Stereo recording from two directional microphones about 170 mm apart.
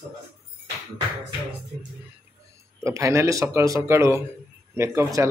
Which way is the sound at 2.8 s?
15° right (ahead or behind).